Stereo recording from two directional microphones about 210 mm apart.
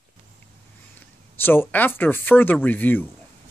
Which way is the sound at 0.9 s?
10° left (ahead or behind).